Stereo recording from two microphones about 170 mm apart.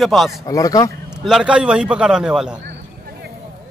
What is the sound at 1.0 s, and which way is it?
Speech, 5° right (ahead or behind).